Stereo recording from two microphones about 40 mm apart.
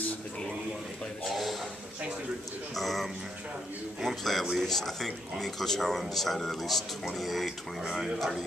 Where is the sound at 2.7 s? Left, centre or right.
Centre.